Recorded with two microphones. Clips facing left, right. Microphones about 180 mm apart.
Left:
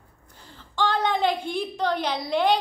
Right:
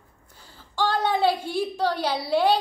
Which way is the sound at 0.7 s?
10° right (ahead or behind).